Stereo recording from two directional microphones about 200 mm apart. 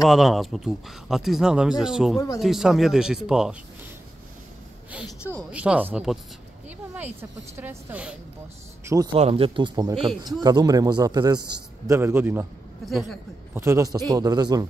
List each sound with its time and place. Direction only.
0.0 s speech: centre (ahead or behind)
2.1 s speech: 15° left (ahead or behind)
2.4 s speech: centre (ahead or behind)
5.5 s a woman's voice: 5° right (ahead or behind)
8.8 s speech: 15° right (ahead or behind)
9.1 s a man's voice: 30° right (ahead or behind); by 12.4 s 10° right (ahead or behind)
12.8 s speech: centre (ahead or behind)
13.6 s a woman's voice: 15° right (ahead or behind)